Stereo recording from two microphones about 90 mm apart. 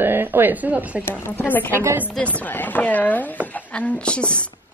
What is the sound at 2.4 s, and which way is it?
A woman's voice, 20° left (ahead or behind).